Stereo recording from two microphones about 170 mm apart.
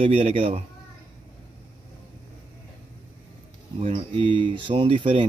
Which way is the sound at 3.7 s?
35° right (ahead or behind).